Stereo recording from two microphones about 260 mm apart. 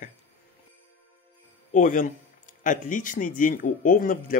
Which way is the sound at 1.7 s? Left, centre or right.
Left.